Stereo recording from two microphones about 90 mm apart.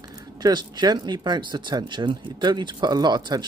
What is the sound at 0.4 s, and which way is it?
Speech, 50° right (ahead or behind).